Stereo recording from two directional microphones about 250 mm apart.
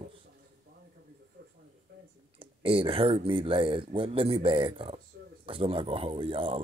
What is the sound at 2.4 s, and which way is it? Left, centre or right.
Speech, right.